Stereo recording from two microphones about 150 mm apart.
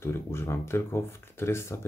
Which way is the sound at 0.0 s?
15° left (ahead or behind).